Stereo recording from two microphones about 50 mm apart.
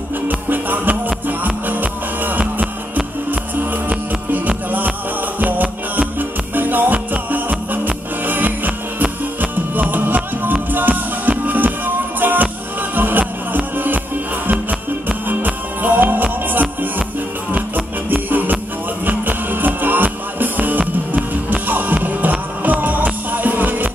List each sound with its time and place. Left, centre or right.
0.3 s music: right
4.5 s music: right